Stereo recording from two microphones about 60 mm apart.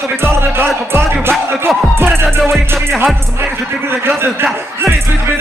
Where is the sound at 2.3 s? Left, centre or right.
Centre.